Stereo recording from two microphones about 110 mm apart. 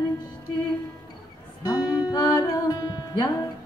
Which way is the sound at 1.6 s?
35° left (ahead or behind).